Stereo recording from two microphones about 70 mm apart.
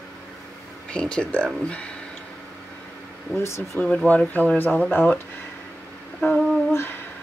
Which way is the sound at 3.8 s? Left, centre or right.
Centre.